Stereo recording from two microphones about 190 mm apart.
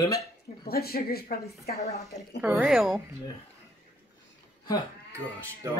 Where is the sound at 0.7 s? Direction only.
55° left (ahead or behind).